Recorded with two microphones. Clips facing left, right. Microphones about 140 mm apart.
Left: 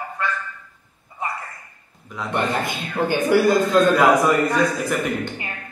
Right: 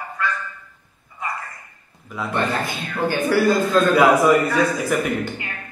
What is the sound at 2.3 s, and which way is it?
A man's voice, 15° left (ahead or behind).